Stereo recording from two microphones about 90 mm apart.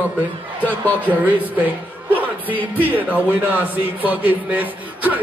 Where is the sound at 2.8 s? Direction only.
20° right (ahead or behind).